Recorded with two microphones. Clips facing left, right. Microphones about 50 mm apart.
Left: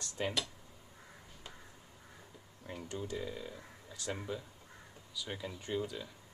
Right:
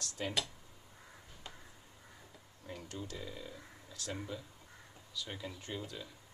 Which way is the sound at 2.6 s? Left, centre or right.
Centre.